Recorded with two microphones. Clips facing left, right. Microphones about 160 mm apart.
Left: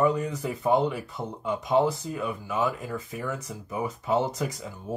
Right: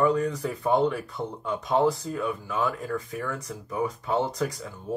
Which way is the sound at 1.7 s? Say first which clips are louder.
Even; centre (ahead or behind).